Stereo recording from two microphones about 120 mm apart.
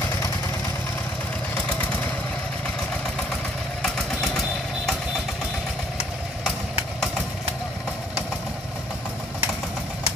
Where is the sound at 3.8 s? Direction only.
Centre (ahead or behind).